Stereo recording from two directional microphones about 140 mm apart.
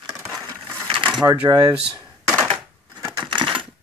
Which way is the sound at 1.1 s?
5° right (ahead or behind).